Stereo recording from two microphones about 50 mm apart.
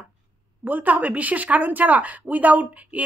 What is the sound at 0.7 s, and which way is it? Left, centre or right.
Speech, right.